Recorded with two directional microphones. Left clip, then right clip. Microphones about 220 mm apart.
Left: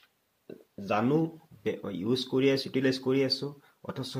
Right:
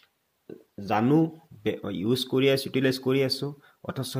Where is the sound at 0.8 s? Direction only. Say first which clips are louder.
Right 4 dB; 45° right (ahead or behind).